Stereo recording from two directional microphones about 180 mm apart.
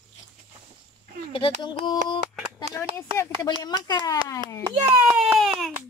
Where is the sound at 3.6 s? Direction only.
20° left (ahead or behind).